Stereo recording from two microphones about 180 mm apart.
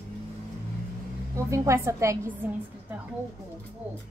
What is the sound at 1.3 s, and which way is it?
A woman's voice, 15° right (ahead or behind).